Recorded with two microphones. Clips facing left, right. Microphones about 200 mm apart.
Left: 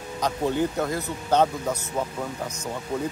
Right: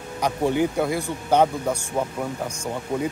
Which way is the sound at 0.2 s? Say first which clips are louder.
Right 3 dB; 15° right (ahead or behind).